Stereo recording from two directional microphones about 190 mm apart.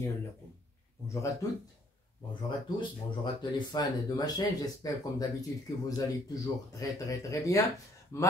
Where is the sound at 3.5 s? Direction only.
20° left (ahead or behind).